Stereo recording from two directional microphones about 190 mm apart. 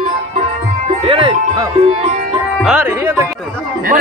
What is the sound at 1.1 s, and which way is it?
Music, 30° right (ahead or behind).